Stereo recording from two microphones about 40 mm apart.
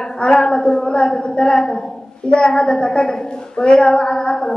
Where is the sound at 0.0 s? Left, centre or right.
Centre.